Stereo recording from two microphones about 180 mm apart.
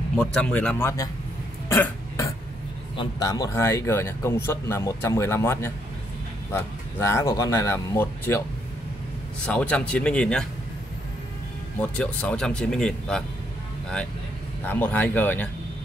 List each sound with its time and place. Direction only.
0.1 s speech: 5° left (ahead or behind)
1.7 s burping: 15° left (ahead or behind)
3.0 s speech: 20° left (ahead or behind)
9.5 s speech: 5° left (ahead or behind)
11.8 s speech: 5° left (ahead or behind)
14.6 s speech: 10° left (ahead or behind)